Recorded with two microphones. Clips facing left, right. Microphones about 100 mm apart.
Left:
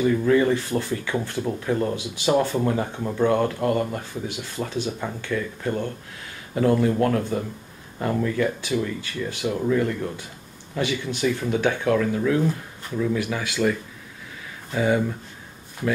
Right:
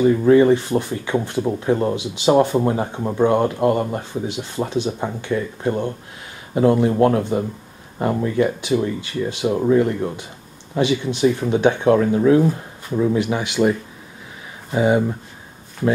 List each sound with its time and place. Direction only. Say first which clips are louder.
0.0 s speech: right 6 dB; 30° right (ahead or behind)